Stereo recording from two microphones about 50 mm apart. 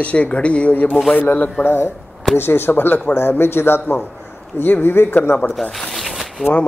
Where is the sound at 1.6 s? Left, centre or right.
Left.